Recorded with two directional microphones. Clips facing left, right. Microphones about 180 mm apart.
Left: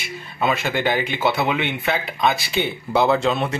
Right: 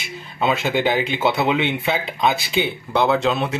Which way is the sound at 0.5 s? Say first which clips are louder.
Right 2 dB; 15° right (ahead or behind).